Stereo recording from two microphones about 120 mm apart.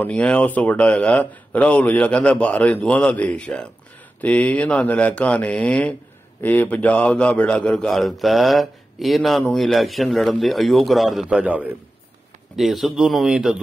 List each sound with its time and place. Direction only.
0.0 s a man's voice: 10° left (ahead or behind); by 11.7 s 15° right (ahead or behind)
12.5 s a man's voice: centre (ahead or behind)